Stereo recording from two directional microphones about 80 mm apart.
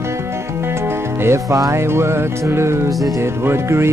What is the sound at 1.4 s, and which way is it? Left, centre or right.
Music, right.